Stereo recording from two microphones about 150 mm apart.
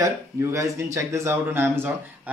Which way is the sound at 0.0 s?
20° right (ahead or behind).